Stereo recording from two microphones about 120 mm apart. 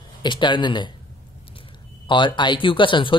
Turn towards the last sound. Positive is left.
turn(degrees=45)  # may be behind; listen again after turning